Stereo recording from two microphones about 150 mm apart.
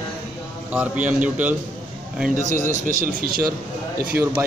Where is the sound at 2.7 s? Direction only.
65° right (ahead or behind).